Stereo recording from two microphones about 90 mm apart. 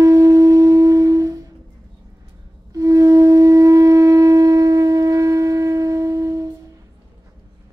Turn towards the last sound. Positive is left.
turn(degrees=-35)  # may be behind; listen again after turning